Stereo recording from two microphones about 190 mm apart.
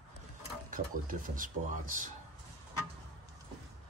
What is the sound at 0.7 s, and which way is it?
Speech, 45° right (ahead or behind).